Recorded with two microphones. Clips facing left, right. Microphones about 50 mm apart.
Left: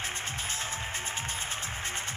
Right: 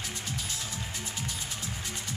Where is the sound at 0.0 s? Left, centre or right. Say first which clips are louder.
Left 2 dB; left.